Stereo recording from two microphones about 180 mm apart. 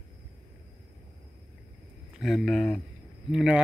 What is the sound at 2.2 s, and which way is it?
Speech, centre (ahead or behind).